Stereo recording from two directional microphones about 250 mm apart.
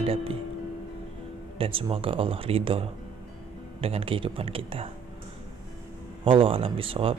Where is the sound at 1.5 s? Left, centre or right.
Right.